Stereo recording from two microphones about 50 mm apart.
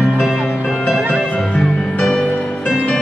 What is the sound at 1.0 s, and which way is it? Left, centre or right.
Music, right.